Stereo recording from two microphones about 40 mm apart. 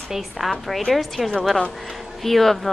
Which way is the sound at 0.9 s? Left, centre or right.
Centre.